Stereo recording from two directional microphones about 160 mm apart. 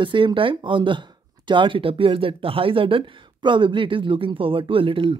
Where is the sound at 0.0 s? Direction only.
30° right (ahead or behind).